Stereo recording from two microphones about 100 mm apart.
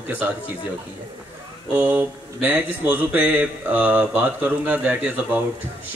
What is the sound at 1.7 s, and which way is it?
Speech, 15° right (ahead or behind).